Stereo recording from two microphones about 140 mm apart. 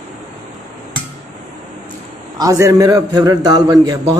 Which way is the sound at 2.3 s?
25° right (ahead or behind).